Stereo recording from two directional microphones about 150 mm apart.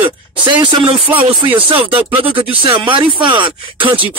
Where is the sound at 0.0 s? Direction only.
30° right (ahead or behind).